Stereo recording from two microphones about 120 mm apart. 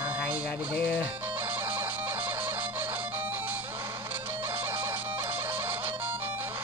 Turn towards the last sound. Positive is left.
turn(degrees=-15)  # may be behind; listen again after turning